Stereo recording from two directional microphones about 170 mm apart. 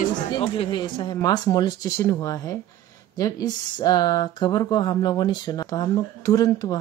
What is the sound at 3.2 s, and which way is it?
Speech, 20° left (ahead or behind).